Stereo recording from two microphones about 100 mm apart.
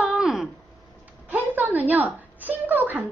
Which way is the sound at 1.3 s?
15° right (ahead or behind).